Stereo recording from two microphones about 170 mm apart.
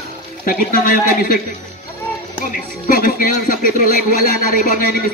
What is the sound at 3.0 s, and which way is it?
Speech, 55° left (ahead or behind).